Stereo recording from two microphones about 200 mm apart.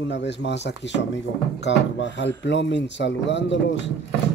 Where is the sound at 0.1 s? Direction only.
60° left (ahead or behind).